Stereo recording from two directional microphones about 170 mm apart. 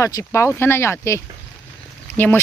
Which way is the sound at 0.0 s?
15° left (ahead or behind).